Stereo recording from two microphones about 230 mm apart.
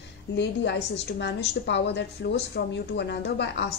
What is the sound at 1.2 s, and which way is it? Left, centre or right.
A woman's voice, left.